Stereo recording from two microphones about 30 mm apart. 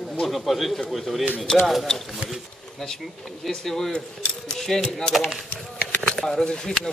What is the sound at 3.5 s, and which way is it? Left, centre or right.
Speech, centre.